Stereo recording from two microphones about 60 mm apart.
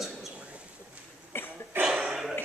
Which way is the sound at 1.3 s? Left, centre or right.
Left.